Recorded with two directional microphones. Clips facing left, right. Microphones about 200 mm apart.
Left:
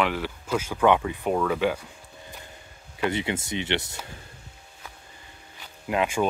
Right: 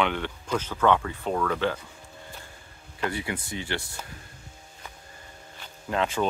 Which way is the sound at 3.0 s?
20° left (ahead or behind).